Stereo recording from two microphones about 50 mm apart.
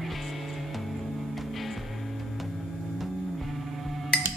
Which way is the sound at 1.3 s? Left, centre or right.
Centre.